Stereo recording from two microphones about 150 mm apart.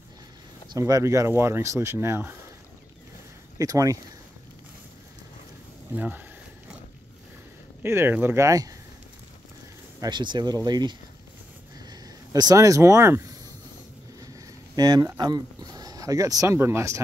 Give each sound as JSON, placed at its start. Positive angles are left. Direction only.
{"t": 0.7, "sound": "speech", "side_deg": -25}
{"t": 3.5, "sound": "speech", "side_deg": -20}
{"t": 5.9, "sound": "speech", "side_deg": -10}
{"t": 7.8, "sound": "speech", "side_deg": -15}
{"t": 9.9, "sound": "speech", "side_deg": -30}
{"t": 14.8, "sound": "speech", "side_deg": -25}